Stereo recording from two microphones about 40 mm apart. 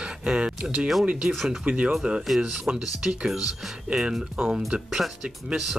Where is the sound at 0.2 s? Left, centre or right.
Right.